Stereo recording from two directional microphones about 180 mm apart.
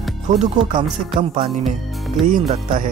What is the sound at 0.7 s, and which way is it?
Speech, 30° right (ahead or behind).